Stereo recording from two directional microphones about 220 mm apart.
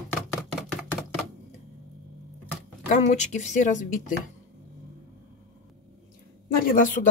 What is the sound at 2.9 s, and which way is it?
Speech, 30° left (ahead or behind).